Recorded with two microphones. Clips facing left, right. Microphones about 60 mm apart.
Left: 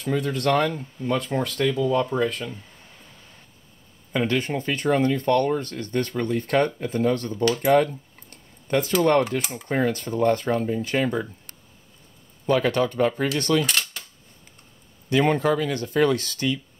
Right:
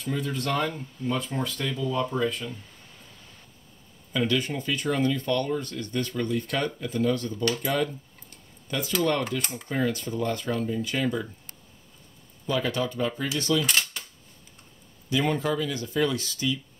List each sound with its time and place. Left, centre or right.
0.0 s speech: left
4.2 s speech: left
7.6 s a sound: left
9.3 s speech: left
12.4 s speech: left
13.7 s coin: centre
15.0 s speech: left